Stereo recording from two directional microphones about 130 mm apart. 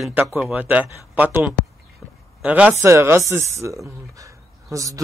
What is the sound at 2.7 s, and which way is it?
Speech, 20° right (ahead or behind).